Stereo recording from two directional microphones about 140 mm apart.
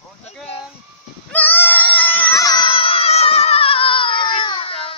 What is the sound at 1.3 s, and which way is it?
Goat, 15° left (ahead or behind).